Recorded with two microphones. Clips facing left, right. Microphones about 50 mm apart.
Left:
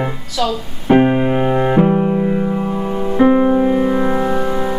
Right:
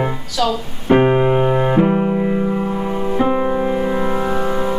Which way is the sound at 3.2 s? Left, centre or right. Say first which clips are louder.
Left 8 dB; centre.